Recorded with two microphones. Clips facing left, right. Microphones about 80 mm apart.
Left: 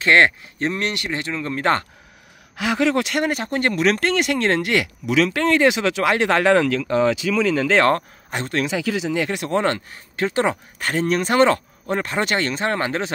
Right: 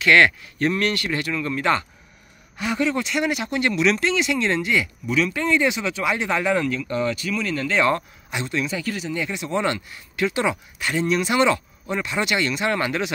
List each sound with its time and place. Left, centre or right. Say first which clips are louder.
0.0 s speech: left 1 dB; left
2.5 s speech: left 4 dB; left
3.3 s speech: left 1 dB; left
7.9 s speech: left 3 dB; left
8.5 s speech: left 5 dB; left